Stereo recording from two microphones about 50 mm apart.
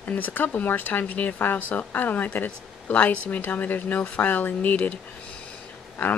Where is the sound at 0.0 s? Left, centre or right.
Left.